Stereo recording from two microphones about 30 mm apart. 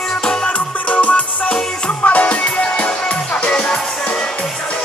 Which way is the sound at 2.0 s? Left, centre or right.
Left.